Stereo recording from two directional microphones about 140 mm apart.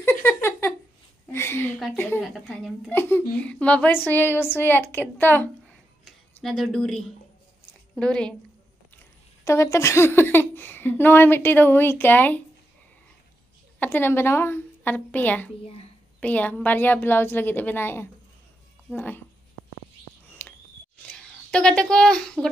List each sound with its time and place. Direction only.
0.0 s a sound: 15° left (ahead or behind)
2.0 s speech: 15° left (ahead or behind)
2.2 s a woman's voice: centre (ahead or behind)
2.9 s a woman's voice: 15° left (ahead or behind)
6.0 s speech: centre (ahead or behind)
9.4 s speech: 20° left (ahead or behind)
13.7 s speech: 15° left (ahead or behind)
20.4 s a sound: 15° left (ahead or behind)
21.0 s a child's voice: 5° left (ahead or behind)